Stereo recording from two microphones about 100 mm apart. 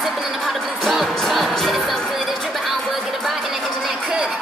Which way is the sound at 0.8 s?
Centre (ahead or behind).